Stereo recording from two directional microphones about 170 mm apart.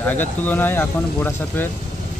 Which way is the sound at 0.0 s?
10° left (ahead or behind).